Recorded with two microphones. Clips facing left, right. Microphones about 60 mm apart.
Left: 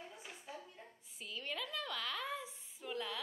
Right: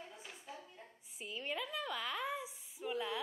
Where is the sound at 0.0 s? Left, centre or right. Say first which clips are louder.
Even; centre.